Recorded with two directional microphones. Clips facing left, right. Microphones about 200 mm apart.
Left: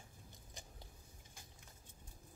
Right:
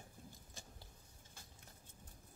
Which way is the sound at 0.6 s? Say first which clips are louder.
Left 2 dB; 15° left (ahead or behind).